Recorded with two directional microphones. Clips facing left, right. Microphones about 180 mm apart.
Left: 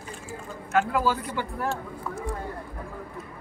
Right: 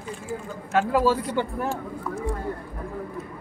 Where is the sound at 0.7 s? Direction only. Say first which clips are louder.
Right 3 dB; 30° right (ahead or behind).